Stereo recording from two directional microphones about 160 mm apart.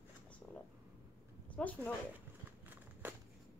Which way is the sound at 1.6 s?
10° left (ahead or behind).